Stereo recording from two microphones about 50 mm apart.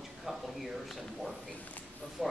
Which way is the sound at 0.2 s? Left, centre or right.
Centre.